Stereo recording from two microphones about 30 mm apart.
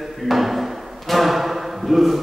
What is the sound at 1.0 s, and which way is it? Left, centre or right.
Music, centre.